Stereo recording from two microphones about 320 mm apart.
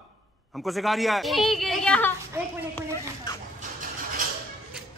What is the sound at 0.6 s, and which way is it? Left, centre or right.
Speech, centre.